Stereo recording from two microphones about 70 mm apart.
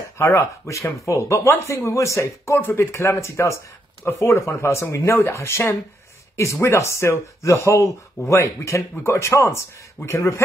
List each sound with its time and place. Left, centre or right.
0.2 s speech: left